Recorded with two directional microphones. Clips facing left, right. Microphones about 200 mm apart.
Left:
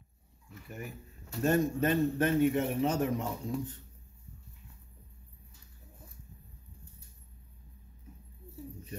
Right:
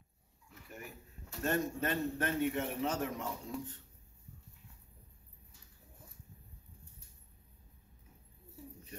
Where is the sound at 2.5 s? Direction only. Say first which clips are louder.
Left 6 dB; 10° left (ahead or behind).